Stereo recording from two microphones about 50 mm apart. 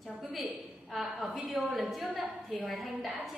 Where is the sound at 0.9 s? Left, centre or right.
Centre.